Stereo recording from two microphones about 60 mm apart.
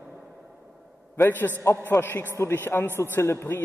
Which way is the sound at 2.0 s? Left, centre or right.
Left.